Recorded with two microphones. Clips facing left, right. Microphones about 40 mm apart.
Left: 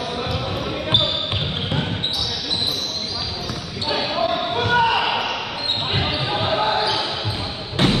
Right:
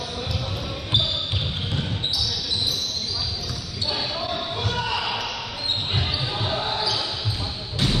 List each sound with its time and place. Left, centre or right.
0.8 s basketball bounce: left
3.9 s basketball bounce: left